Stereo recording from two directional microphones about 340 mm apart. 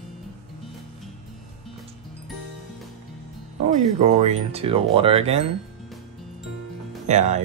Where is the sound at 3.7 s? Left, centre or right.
Centre.